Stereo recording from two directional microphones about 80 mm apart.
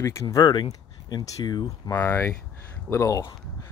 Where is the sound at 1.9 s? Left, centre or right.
Left.